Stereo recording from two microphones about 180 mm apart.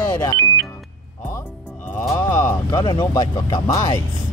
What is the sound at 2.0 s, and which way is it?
Speech, 15° left (ahead or behind).